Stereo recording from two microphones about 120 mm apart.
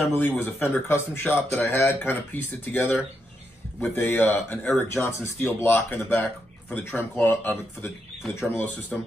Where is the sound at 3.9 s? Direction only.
15° left (ahead or behind).